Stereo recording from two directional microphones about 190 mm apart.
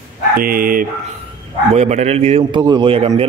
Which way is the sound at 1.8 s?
35° right (ahead or behind).